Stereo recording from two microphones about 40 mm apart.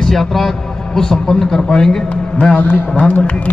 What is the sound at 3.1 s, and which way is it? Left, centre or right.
Speech, left.